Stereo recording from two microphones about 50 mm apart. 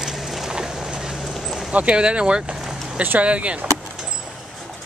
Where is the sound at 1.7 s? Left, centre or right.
Right.